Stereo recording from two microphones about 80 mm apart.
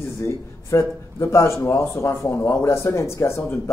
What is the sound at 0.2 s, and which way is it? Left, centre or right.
A man's voice, left.